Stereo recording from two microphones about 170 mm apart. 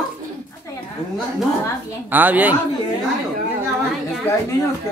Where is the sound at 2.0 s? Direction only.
10° right (ahead or behind).